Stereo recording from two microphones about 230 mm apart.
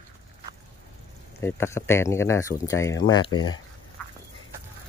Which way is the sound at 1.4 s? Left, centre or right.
Centre.